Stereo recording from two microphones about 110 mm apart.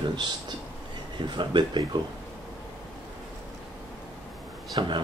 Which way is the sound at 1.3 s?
45° right (ahead or behind).